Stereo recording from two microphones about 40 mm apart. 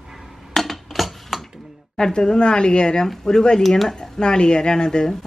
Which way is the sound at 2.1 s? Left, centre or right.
Left.